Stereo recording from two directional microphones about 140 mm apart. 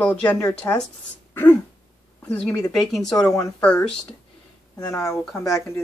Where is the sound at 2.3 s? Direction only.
5° left (ahead or behind).